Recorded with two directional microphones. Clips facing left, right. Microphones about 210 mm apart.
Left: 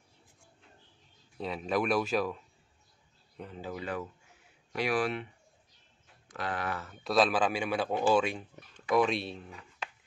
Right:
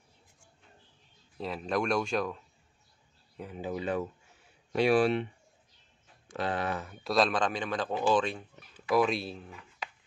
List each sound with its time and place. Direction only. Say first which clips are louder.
1.4 s speech: even; centre (ahead or behind)
3.3 s speech: right 4 dB; 10° right (ahead or behind)
6.9 s speech: left 1 dB; centre (ahead or behind)
8.7 s speech: even; centre (ahead or behind)